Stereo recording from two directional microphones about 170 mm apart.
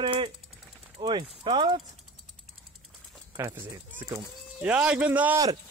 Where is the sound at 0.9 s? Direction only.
30° right (ahead or behind).